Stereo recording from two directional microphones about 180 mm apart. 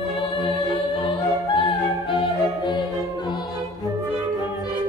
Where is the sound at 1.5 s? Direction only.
30° left (ahead or behind).